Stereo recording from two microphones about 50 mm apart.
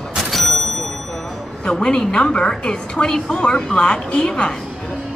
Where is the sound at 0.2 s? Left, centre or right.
Centre.